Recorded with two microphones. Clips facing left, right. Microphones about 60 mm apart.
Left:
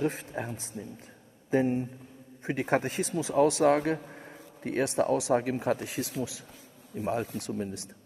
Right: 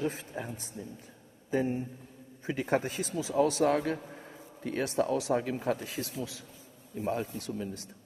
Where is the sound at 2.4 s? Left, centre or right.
Left.